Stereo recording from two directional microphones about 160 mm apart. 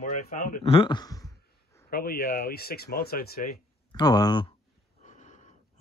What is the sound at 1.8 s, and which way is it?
Speech, 65° left (ahead or behind).